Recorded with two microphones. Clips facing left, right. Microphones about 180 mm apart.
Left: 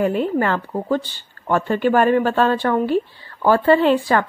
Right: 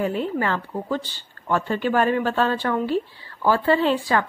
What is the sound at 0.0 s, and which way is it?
Speech, 55° left (ahead or behind).